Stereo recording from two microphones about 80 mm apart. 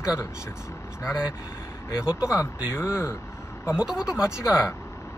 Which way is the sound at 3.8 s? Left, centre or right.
Centre.